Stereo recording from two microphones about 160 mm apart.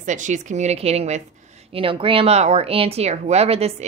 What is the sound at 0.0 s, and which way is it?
A woman's voice, 50° right (ahead or behind).